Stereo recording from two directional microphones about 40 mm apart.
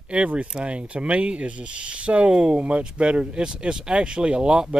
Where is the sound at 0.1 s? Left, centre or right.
Right.